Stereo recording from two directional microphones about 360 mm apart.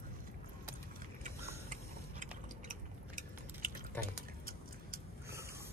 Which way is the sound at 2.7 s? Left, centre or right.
Right.